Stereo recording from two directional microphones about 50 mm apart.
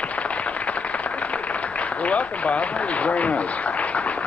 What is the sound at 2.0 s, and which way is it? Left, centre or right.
A man's voice, left.